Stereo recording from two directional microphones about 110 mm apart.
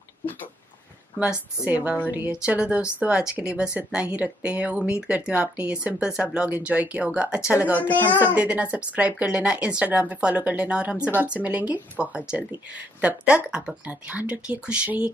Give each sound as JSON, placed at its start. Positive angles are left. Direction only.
{"t": 1.6, "sound": "a woman's voice", "side_deg": -15}
{"t": 7.7, "sound": "a child's voice", "side_deg": 15}
{"t": 8.2, "sound": "a woman's voice", "side_deg": -10}